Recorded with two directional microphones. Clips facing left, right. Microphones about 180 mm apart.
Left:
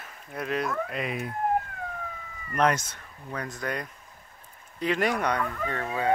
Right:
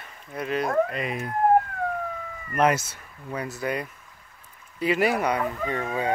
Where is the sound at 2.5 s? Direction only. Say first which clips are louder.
Right 2 dB; 5° right (ahead or behind).